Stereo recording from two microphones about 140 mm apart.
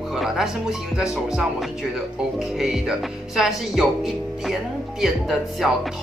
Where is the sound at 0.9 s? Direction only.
5° right (ahead or behind).